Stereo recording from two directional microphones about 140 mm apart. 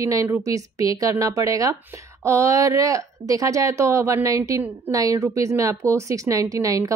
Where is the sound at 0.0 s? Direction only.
25° right (ahead or behind).